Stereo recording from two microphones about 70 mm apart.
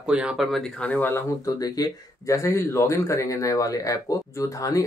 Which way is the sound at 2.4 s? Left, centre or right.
Left.